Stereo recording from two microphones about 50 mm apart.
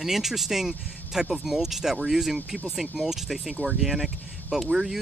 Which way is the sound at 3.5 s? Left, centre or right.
Right.